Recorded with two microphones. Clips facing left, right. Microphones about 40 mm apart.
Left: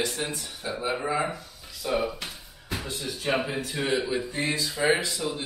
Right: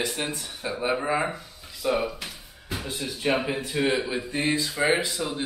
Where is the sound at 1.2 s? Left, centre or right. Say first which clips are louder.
Right 1 dB; right.